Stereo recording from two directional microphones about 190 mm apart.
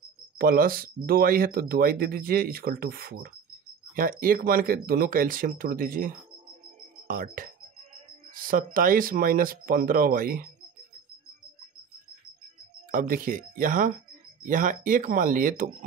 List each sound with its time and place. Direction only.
0.4 s speech: 50° right (ahead or behind)
12.9 s speech: 50° right (ahead or behind)